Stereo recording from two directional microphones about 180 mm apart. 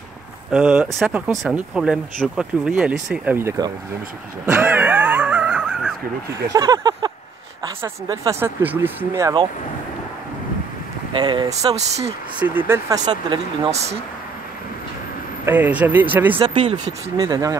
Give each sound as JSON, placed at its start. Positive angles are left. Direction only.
{"t": 0.5, "sound": "speech", "side_deg": -5}
{"t": 4.5, "sound": "a sound", "side_deg": -10}
{"t": 6.5, "sound": "a sound", "side_deg": -20}
{"t": 7.6, "sound": "speech", "side_deg": -20}
{"t": 11.1, "sound": "speech", "side_deg": -25}
{"t": 12.0, "sound": "speech", "side_deg": -10}
{"t": 13.7, "sound": "speech", "side_deg": -35}
{"t": 15.4, "sound": "speech", "side_deg": -10}
{"t": 16.3, "sound": "speech", "side_deg": -25}